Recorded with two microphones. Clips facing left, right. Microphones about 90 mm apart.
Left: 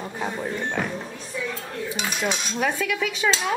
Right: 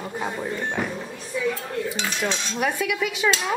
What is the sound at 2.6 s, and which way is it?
Speech, 5° right (ahead or behind).